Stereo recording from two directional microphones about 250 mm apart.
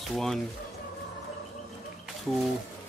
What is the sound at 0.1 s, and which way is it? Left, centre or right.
Speech, centre.